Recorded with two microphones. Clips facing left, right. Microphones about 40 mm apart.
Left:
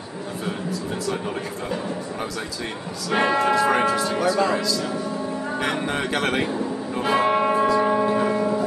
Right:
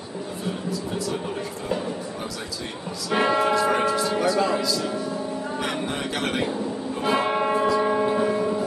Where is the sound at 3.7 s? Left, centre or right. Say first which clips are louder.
Left 2 dB; left.